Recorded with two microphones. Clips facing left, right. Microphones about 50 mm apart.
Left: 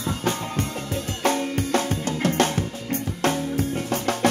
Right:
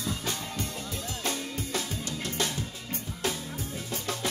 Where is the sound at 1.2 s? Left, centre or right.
Left.